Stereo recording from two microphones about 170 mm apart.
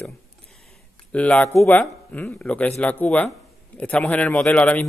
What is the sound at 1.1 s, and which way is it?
Speech, 10° left (ahead or behind).